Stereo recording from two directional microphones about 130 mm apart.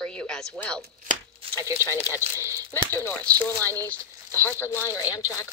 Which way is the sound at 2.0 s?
20° left (ahead or behind).